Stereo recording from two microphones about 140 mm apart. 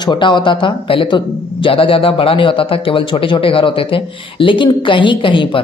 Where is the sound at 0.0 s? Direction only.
35° left (ahead or behind).